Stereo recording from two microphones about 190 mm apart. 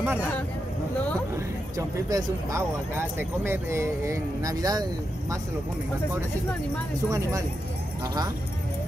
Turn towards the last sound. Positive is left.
turn(degrees=-15)  # may be behind; listen again after turning